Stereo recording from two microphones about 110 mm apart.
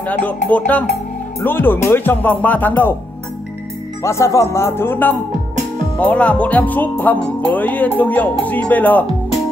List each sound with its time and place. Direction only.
0.5 s music: 15° left (ahead or behind)
1.4 s speech: 20° left (ahead or behind)
4.0 s speech: 25° left (ahead or behind)
5.9 s music: 10° left (ahead or behind)